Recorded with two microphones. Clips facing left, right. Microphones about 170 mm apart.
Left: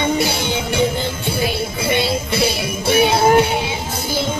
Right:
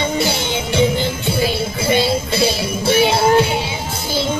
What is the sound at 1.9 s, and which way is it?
Music, 25° right (ahead or behind).